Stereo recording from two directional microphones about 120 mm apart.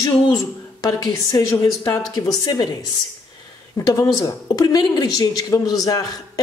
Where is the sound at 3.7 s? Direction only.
30° left (ahead or behind).